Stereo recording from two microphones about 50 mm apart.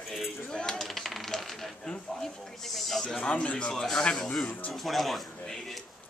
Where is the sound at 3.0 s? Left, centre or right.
Centre.